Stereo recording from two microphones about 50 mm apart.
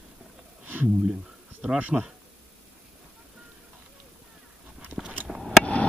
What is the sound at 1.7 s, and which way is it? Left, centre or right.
Speech, right.